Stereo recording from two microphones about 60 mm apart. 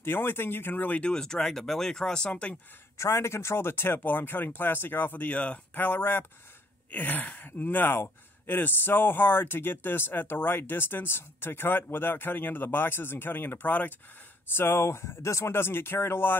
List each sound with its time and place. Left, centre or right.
0.0 s speech: left
1.1 s speech: centre
3.0 s speech: left
5.9 s speech: left
14.5 s speech: left